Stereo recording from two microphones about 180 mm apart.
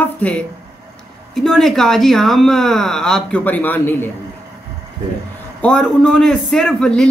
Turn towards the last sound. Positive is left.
turn(degrees=5)  # may be behind; listen again after turning